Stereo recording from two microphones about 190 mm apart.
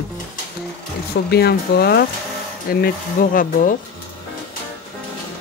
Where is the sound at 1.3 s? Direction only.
60° left (ahead or behind).